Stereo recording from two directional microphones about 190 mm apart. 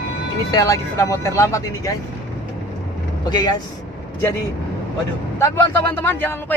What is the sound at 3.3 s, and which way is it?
Speech, 20° left (ahead or behind).